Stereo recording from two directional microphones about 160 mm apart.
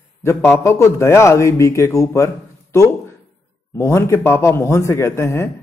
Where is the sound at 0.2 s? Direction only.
15° left (ahead or behind).